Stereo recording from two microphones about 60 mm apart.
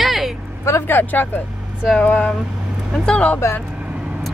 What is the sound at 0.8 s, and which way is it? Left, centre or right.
Speech, left.